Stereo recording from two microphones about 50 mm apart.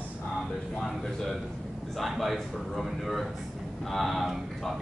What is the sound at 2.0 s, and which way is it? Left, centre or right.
A man's voice, centre.